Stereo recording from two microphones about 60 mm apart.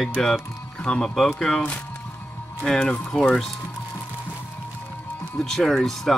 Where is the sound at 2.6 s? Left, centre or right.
Centre.